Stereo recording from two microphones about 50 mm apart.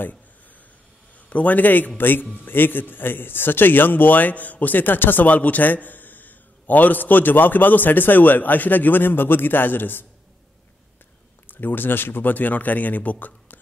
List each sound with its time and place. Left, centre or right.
1.3 s a man's voice: left
11.4 s a man's voice: left